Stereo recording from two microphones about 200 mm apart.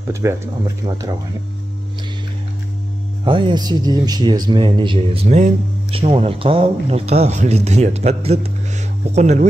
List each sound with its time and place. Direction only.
0.1 s speech: 15° right (ahead or behind)
3.3 s speech: 25° right (ahead or behind)